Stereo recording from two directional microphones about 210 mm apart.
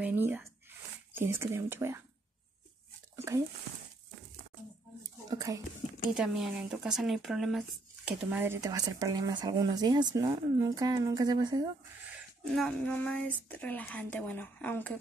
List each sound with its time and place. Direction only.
0.0 s speech: 10° right (ahead or behind)
5.3 s speech: 15° right (ahead or behind)
6.1 s speech: 5° right (ahead or behind); by 11.6 s 20° right (ahead or behind)
12.5 s a woman's voice: 5° left (ahead or behind)